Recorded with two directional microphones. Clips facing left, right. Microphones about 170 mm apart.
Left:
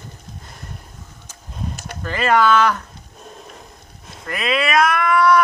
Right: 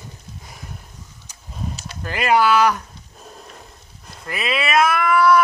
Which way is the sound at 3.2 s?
Centre (ahead or behind).